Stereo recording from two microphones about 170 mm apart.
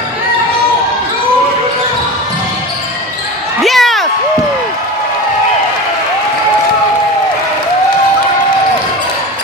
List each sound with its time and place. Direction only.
3.6 s basketball bounce: centre (ahead or behind)